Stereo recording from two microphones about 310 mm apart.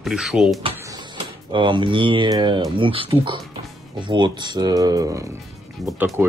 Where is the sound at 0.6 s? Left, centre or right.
Centre.